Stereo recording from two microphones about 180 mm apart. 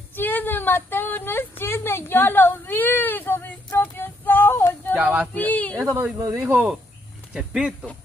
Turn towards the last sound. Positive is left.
turn(degrees=-5)  # may be behind; listen again after turning